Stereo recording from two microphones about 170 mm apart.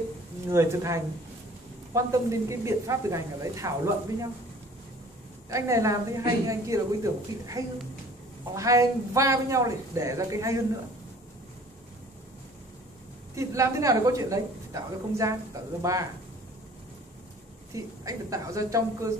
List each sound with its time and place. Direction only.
0.5 s speech: 15° right (ahead or behind)
5.5 s a woman's voice: 20° right (ahead or behind)
13.3 s a woman's voice: 20° right (ahead or behind)
18.0 s a woman's voice: 20° right (ahead or behind)